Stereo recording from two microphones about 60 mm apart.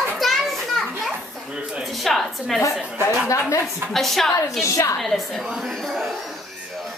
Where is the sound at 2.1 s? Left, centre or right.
Centre.